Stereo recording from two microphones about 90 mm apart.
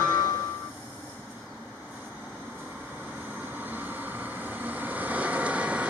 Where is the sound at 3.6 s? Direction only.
20° right (ahead or behind).